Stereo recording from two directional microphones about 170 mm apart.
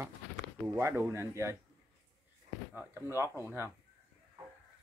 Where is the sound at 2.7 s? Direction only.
15° right (ahead or behind).